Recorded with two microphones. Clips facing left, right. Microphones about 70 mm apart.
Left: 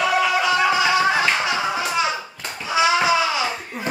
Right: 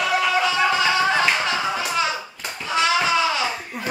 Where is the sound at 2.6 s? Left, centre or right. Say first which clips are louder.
Left 2 dB; centre.